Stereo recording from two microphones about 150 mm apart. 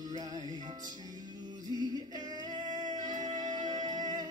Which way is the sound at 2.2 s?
25° right (ahead or behind).